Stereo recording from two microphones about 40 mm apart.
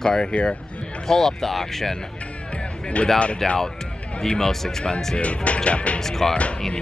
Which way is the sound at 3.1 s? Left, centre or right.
Left.